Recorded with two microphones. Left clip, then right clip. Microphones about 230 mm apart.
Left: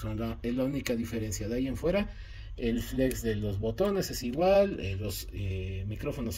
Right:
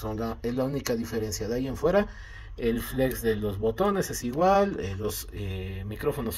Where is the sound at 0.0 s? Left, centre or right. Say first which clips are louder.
Right 5 dB; centre.